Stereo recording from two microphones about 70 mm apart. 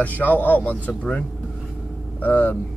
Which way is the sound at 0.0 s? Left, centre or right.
Left.